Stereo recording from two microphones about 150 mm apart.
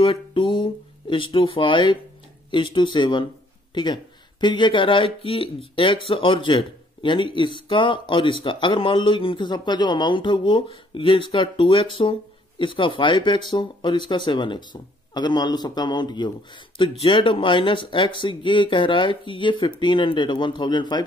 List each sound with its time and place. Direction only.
0.0 s speech: 35° left (ahead or behind)